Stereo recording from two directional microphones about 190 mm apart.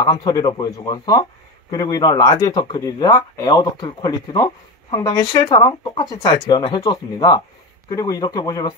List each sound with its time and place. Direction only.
0.0 s speech: 20° left (ahead or behind)